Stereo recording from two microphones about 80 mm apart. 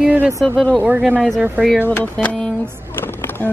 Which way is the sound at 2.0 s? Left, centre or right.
Centre.